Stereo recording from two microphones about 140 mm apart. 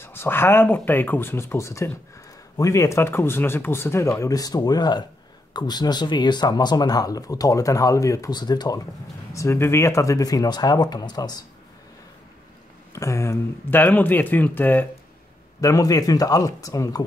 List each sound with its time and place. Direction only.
0.0 s speech: 15° left (ahead or behind)
12.9 s speech: 20° left (ahead or behind)
15.6 s speech: 25° left (ahead or behind)